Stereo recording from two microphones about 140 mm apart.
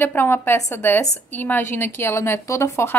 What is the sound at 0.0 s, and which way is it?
A woman's voice, 15° left (ahead or behind).